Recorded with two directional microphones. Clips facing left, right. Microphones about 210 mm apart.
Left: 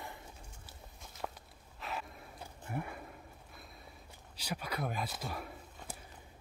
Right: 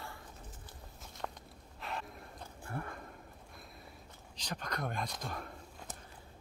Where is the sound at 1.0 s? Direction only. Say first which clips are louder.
Even; 5° left (ahead or behind).